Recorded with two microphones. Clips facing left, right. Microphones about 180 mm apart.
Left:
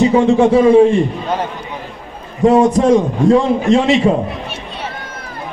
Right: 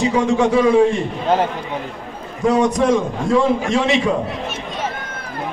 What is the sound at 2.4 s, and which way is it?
A man's voice, 35° left (ahead or behind).